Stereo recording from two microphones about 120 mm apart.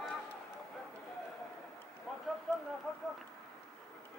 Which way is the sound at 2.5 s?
5° left (ahead or behind).